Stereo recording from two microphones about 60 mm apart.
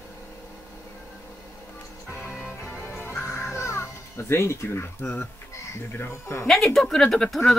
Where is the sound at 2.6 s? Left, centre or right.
Left.